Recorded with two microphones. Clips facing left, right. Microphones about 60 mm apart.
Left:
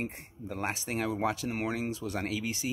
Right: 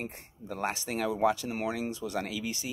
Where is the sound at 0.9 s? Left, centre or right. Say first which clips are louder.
Right 4 dB; left.